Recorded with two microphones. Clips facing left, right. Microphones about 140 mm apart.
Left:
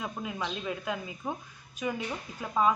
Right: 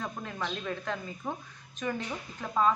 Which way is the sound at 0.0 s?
10° left (ahead or behind).